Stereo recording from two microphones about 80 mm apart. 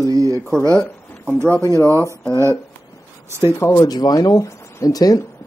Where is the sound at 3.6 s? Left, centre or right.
Left.